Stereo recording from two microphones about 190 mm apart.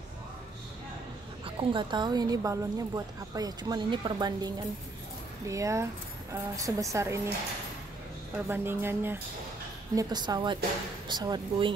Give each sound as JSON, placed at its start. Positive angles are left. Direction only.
{"t": 1.4, "sound": "speech", "side_deg": -25}
{"t": 5.5, "sound": "a woman's voice", "side_deg": -15}
{"t": 8.5, "sound": "a woman's voice", "side_deg": -10}